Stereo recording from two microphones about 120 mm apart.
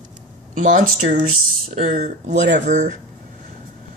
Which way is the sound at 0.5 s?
90° right.